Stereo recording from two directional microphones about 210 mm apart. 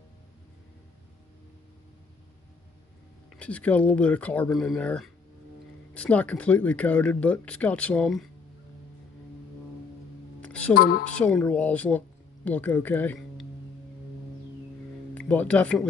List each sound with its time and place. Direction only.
3.3 s speech: 5° left (ahead or behind)
10.4 s music: 5° left (ahead or behind)
10.7 s a woman's voice: 45° left (ahead or behind)
11.1 s speech: 5° left (ahead or behind)
15.1 s speech: 5° left (ahead or behind)